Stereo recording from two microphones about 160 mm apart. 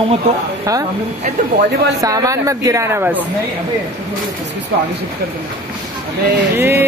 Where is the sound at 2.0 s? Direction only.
20° right (ahead or behind).